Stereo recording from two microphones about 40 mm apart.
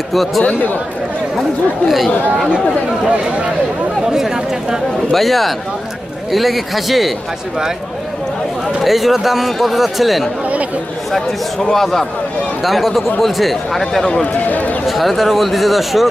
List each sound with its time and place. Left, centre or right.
0.1 s speech: centre
3.1 s speech: right
4.1 s speech: centre
5.1 s speech: centre
8.8 s speech: centre
11.7 s a man's voice: centre
14.2 s a man's voice: left
14.9 s speech: centre